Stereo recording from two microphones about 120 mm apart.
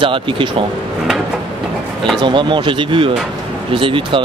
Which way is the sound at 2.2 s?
40° right (ahead or behind).